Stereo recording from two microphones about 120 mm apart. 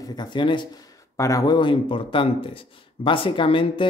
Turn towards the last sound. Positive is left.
turn(degrees=45)  # may be behind; listen again after turning